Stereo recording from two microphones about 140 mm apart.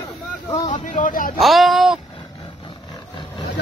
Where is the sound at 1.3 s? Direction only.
Centre (ahead or behind).